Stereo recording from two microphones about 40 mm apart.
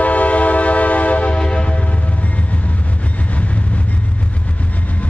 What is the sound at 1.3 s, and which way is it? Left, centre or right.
Train, left.